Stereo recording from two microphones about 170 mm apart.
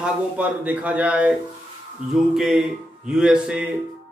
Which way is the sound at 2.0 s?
45° right (ahead or behind).